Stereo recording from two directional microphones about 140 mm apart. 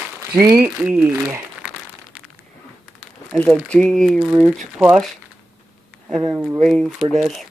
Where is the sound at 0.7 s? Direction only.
10° right (ahead or behind).